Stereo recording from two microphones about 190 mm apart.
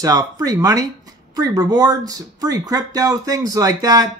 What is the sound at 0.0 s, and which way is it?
Speech, 20° right (ahead or behind).